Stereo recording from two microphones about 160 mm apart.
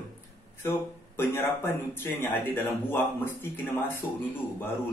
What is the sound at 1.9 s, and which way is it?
Speech, 10° left (ahead or behind).